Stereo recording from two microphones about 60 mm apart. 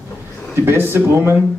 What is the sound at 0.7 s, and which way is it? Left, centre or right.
Speech, right.